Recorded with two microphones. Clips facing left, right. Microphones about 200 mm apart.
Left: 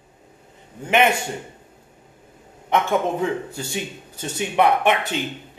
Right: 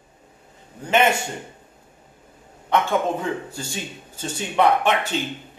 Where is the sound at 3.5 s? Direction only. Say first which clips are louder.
Left 3 dB; 15° left (ahead or behind).